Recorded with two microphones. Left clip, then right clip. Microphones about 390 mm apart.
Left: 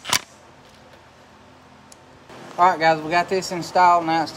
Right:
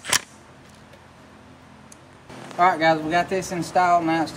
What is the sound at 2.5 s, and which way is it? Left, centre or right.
Speech, left.